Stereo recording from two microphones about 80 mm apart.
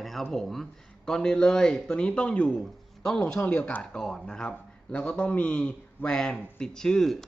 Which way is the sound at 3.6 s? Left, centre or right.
Centre.